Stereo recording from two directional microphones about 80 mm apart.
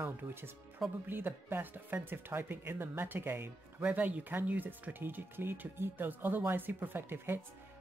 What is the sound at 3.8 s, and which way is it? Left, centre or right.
Speech, centre.